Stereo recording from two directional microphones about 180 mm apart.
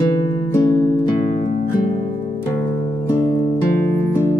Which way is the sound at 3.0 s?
20° left (ahead or behind).